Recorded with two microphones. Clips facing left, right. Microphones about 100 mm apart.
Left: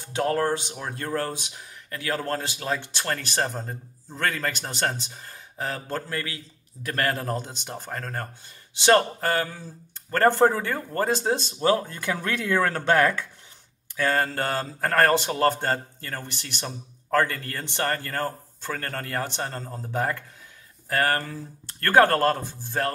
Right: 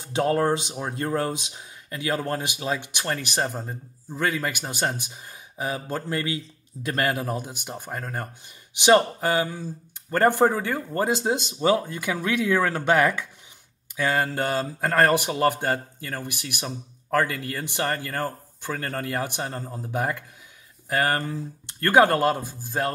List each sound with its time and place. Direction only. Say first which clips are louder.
0.1 s a man's voice: right 2 dB; 20° right (ahead or behind)
6.0 s a man's voice: right 5 dB; 20° right (ahead or behind)